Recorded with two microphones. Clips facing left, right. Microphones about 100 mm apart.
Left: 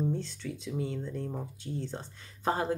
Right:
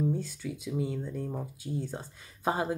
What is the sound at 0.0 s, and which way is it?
Speech, 10° right (ahead or behind).